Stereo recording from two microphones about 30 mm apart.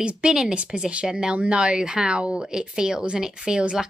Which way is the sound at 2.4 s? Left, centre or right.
Right.